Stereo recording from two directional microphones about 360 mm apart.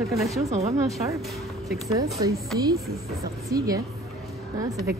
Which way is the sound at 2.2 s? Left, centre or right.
Centre.